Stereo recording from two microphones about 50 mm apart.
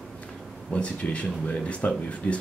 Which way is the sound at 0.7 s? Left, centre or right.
Left.